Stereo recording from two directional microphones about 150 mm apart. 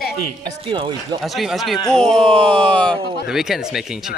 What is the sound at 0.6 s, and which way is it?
Speech, 35° right (ahead or behind).